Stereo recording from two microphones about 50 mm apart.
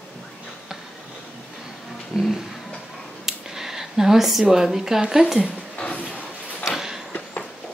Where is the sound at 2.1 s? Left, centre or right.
Centre.